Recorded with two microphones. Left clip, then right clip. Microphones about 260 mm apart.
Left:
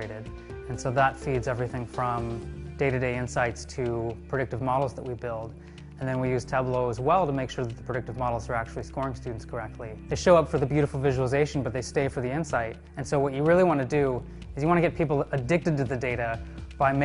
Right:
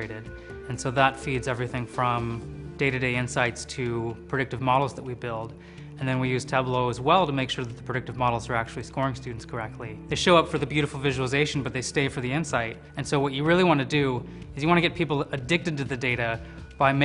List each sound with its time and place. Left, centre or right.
0.8 s speech: left
6.1 s speech: left
10.0 s speech: left
13.1 s speech: left